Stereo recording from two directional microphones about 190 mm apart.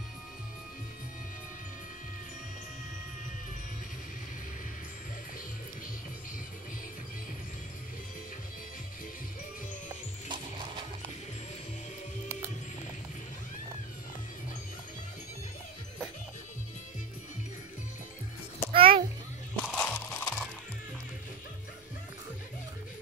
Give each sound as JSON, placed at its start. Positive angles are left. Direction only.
{"t": 10.2, "sound": "music", "side_deg": -25}
{"t": 18.7, "sound": "a sound", "side_deg": -30}
{"t": 19.5, "sound": "music", "side_deg": 5}